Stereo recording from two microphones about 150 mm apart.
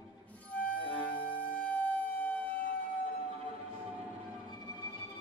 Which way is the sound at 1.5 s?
10° left (ahead or behind).